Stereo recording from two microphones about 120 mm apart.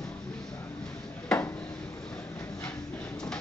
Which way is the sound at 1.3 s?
5° left (ahead or behind).